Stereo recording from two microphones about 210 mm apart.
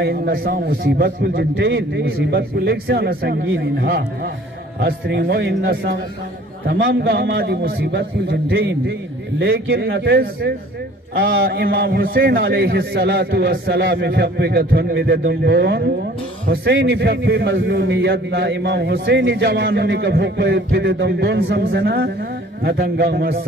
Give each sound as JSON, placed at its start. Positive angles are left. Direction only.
{"t": 0.0, "sound": "a man's voice", "side_deg": -50}